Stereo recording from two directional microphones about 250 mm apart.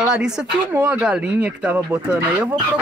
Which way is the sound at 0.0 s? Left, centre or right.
Centre.